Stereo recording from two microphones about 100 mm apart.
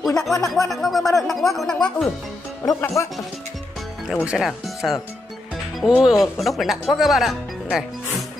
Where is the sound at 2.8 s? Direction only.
30° left (ahead or behind).